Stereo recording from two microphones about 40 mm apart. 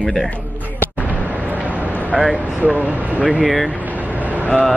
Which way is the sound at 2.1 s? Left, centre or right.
Right.